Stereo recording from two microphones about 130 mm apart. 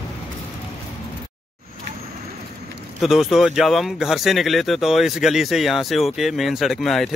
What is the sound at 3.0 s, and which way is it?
Speech, centre (ahead or behind).